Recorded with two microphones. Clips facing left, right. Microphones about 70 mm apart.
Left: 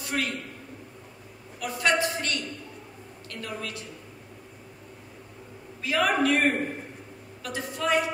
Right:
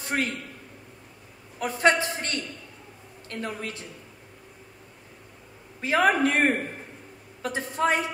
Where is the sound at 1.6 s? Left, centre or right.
Right.